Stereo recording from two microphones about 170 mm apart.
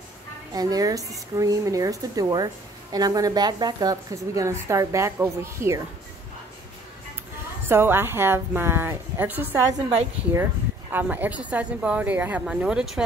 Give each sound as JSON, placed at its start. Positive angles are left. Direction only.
{"t": 0.5, "sound": "speech", "side_deg": -20}
{"t": 7.6, "sound": "a woman's voice", "side_deg": -15}
{"t": 10.9, "sound": "a woman's voice", "side_deg": -10}